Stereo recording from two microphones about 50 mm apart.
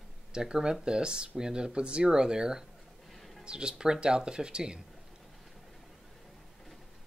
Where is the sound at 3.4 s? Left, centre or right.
Centre.